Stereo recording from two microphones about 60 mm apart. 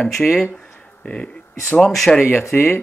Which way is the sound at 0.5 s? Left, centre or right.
Left.